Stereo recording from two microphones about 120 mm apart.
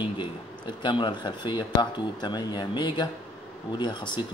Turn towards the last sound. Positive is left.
turn(degrees=40)  # may be behind; listen again after turning